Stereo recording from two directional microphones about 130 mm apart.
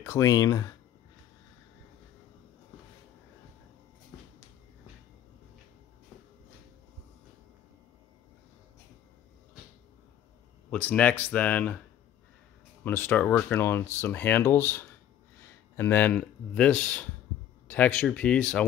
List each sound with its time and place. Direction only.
0.0 s speech: 20° left (ahead or behind)
10.7 s speech: 10° left (ahead or behind)
12.8 s speech: 15° left (ahead or behind)